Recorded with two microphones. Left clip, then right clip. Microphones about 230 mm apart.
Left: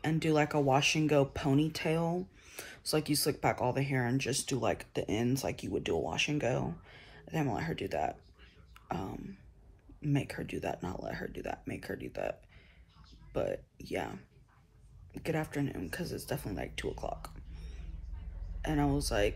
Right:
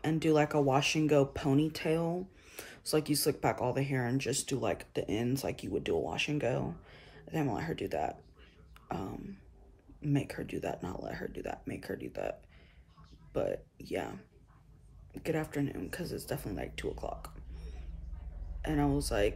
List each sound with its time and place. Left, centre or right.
0.0 s speech: centre